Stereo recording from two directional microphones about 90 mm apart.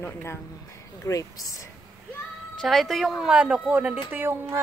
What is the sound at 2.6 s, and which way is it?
Speech, centre (ahead or behind).